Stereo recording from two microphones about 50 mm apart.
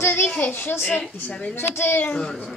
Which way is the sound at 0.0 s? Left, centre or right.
Left.